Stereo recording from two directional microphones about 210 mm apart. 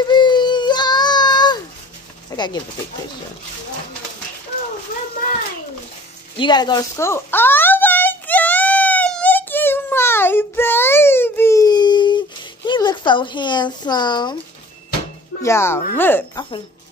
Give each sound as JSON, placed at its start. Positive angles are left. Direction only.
{"t": 0.0, "sound": "baby cry", "side_deg": 20}
{"t": 2.3, "sound": "speech", "side_deg": 20}
{"t": 6.3, "sound": "a sound", "side_deg": 20}
{"t": 12.6, "sound": "speech", "side_deg": 20}
{"t": 15.4, "sound": "speech", "side_deg": 10}